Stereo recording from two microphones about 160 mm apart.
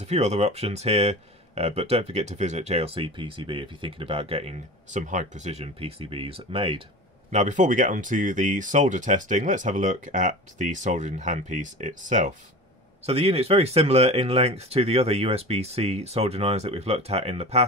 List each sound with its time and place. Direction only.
0.0 s speech: 40° right (ahead or behind)
7.2 s speech: 50° right (ahead or behind)
13.0 s speech: 40° right (ahead or behind)